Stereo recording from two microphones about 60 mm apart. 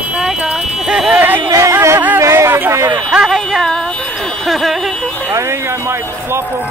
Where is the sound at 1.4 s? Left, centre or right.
Right.